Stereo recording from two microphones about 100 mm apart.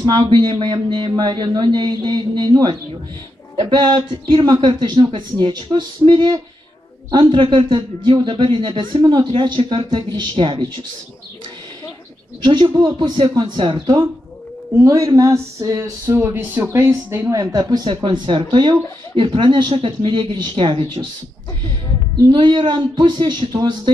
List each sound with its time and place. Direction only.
0.0 s speech: 50° right (ahead or behind)
12.4 s speech: 50° right (ahead or behind)
13.4 s speech: 60° right (ahead or behind)
13.7 s speech: 40° right (ahead or behind); by 21.0 s 60° right (ahead or behind)
22.3 s speech: 50° right (ahead or behind)